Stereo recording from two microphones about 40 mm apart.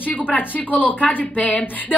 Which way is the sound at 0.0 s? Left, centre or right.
Left.